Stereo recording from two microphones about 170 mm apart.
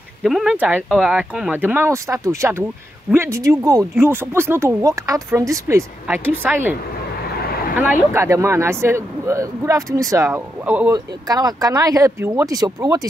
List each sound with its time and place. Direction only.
0.2 s speech: centre (ahead or behind)
7.3 s a sound: 65° left (ahead or behind)
7.7 s speech: 10° right (ahead or behind)
10.9 s speech: 20° right (ahead or behind)